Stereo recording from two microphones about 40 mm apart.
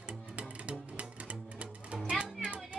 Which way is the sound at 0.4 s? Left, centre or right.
Right.